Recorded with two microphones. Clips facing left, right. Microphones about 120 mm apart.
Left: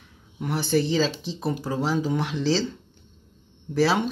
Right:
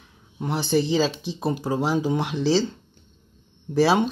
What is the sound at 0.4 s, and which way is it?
Speech, 25° right (ahead or behind).